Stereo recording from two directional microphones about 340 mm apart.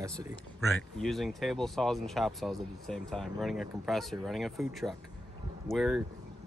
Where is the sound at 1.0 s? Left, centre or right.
Centre.